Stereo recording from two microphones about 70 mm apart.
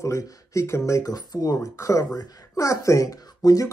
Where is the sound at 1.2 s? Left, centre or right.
Left.